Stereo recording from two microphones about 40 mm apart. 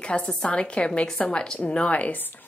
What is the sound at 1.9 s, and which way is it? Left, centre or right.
Speech, left.